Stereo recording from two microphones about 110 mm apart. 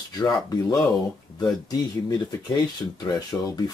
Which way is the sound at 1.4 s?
40° left (ahead or behind).